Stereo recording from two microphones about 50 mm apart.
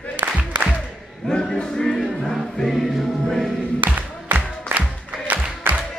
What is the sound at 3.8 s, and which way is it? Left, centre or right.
Music, right.